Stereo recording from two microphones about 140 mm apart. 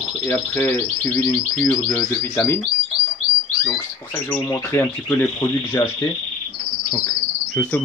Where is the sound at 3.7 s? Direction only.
30° left (ahead or behind).